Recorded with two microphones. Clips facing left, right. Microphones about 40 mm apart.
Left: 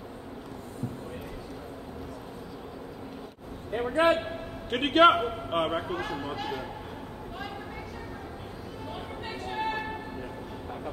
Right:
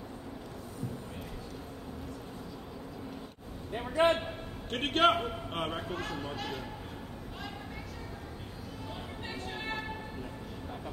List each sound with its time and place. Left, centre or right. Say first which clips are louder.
3.7 s a man's voice: left 3 dB; centre